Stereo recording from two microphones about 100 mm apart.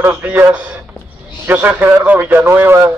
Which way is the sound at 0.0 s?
15° right (ahead or behind).